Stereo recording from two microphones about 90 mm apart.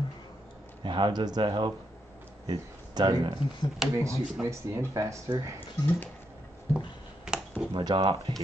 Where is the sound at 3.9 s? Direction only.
30° right (ahead or behind).